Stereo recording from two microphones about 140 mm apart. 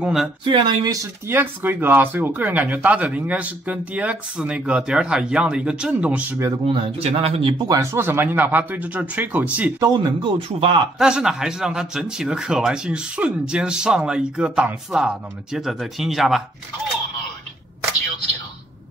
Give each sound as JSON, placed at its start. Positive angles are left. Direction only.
{"t": 0.0, "sound": "speech", "side_deg": -5}
{"t": 0.4, "sound": "speech", "side_deg": -35}
{"t": 1.3, "sound": "speech", "side_deg": -15}
{"t": 6.6, "sound": "speech", "side_deg": -45}
{"t": 7.6, "sound": "speech", "side_deg": -20}
{"t": 9.9, "sound": "speech", "side_deg": -35}
{"t": 11.0, "sound": "speech", "side_deg": -5}